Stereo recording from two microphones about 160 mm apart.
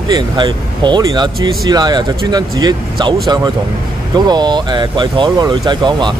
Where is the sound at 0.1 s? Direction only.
30° right (ahead or behind).